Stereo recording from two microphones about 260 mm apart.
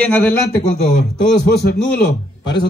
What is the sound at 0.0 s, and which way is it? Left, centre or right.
Speech, centre.